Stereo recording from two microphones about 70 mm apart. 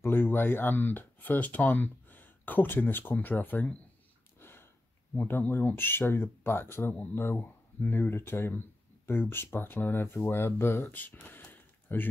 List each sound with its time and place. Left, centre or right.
0.0 s speech: left
4.4 s a sound: left
5.1 s speech: left